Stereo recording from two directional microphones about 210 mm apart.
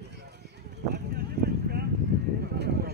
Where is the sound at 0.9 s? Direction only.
50° right (ahead or behind).